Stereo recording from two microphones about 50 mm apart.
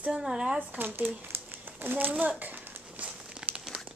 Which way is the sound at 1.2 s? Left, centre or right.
Right.